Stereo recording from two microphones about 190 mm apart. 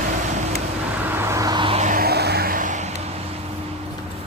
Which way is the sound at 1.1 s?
15° right (ahead or behind).